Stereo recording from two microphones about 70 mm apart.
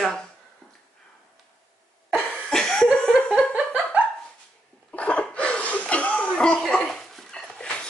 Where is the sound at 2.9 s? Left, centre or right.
Centre.